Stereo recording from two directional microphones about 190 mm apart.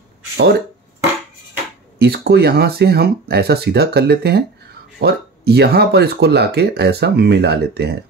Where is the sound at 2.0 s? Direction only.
55° right (ahead or behind).